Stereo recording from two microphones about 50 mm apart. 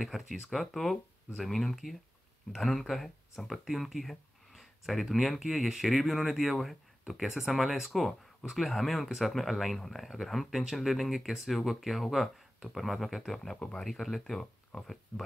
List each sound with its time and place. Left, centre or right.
0.0 s speech: centre
13.6 s speech: centre
13.8 s speech: centre